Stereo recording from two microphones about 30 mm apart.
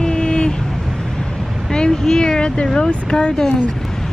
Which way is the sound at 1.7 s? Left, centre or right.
Left.